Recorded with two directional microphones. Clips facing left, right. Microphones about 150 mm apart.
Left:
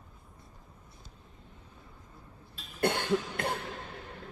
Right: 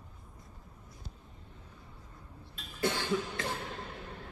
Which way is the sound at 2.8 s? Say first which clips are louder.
Left 3 dB; 60° left (ahead or behind).